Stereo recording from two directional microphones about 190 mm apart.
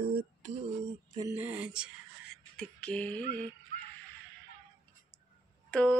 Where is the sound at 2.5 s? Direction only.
5° left (ahead or behind).